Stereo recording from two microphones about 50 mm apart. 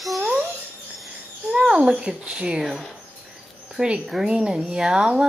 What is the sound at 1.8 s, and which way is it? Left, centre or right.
Speech, centre.